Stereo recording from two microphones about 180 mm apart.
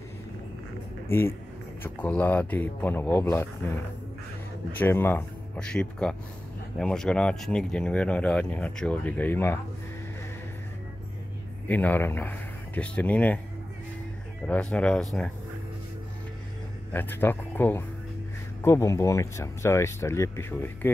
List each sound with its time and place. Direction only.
1.8 s speech: 10° left (ahead or behind)
11.6 s speech: 10° left (ahead or behind)
14.4 s speech: 5° left (ahead or behind)
16.9 s speech: 10° left (ahead or behind)